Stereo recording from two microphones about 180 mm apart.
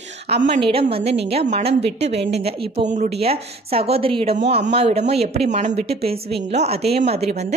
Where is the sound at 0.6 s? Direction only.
30° right (ahead or behind).